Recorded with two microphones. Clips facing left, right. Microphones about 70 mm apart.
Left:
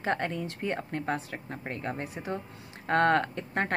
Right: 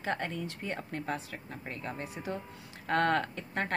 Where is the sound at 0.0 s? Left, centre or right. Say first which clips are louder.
Left 4 dB; left.